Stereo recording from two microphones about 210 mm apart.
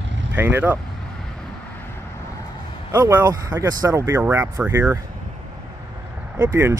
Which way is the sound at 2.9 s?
10° right (ahead or behind).